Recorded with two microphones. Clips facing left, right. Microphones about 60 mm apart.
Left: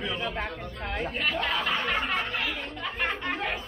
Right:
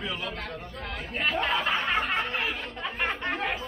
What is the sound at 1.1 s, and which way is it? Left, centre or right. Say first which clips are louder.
Speech: right 4 dB; centre.